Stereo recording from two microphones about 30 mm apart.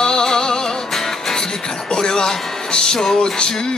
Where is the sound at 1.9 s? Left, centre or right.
Left.